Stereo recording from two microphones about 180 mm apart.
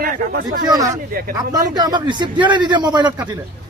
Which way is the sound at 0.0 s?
50° right (ahead or behind).